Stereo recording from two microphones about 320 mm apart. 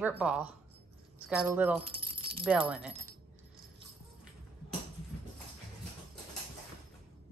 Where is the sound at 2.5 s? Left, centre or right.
Centre.